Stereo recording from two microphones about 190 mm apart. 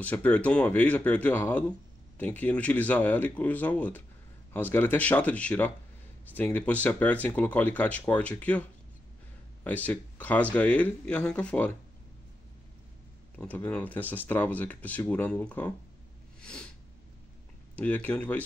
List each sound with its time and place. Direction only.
0.0 s speech: 10° left (ahead or behind)
13.4 s speech: 5° left (ahead or behind)
16.3 s a sound: 5° left (ahead or behind)
17.7 s speech: 10° left (ahead or behind)